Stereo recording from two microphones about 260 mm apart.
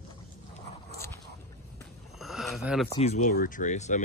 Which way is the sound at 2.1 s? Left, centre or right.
Centre.